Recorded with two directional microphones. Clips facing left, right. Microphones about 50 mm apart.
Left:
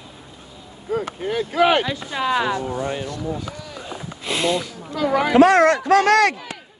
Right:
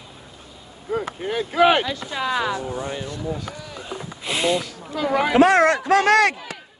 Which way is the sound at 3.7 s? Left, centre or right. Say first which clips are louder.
Even; centre.